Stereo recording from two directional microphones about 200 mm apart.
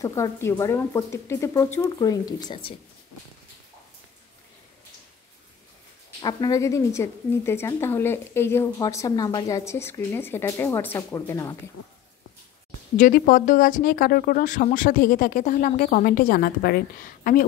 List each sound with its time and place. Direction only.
0.0 s a woman's voice: 15° left (ahead or behind)
6.2 s a woman's voice: 20° left (ahead or behind)
12.9 s speech: 40° left (ahead or behind)